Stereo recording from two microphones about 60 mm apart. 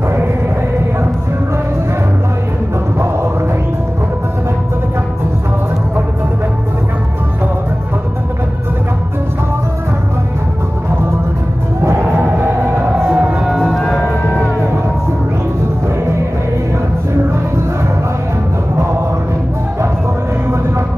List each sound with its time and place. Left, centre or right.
11.8 s music: right
13.0 s music: centre
13.7 s music: centre